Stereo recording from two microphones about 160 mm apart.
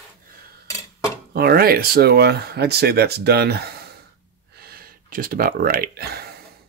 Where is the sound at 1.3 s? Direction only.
70° right (ahead or behind); by 3.9 s 90° right.